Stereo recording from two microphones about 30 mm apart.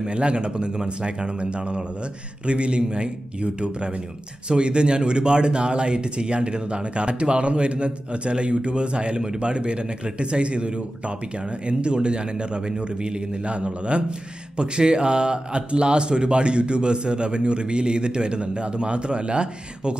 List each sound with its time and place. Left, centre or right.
0.0 s speech: right